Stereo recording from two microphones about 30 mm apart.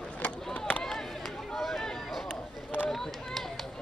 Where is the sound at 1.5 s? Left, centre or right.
Centre.